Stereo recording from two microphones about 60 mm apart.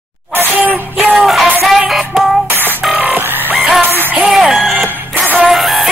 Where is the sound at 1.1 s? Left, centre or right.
Centre.